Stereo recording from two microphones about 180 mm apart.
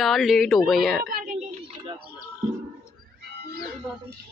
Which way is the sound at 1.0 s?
50° right (ahead or behind).